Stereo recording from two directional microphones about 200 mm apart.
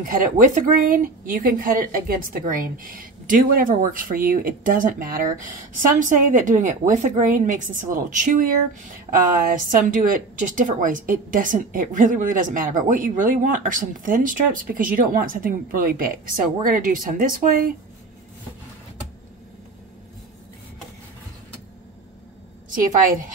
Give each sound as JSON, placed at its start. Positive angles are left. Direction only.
{"t": 0.0, "sound": "speech", "side_deg": -45}
{"t": 9.6, "sound": "speech", "side_deg": -40}